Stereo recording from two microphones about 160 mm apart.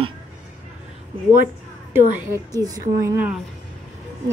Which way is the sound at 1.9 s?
20° right (ahead or behind).